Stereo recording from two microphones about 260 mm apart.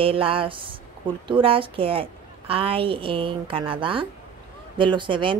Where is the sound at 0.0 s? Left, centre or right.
Right.